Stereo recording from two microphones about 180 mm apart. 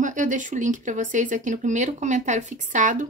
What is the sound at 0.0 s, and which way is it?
A woman's voice, 45° right (ahead or behind).